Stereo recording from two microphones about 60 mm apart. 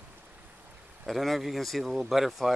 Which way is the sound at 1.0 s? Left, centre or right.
Centre.